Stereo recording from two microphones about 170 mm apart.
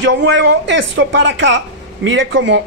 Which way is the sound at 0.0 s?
90° right.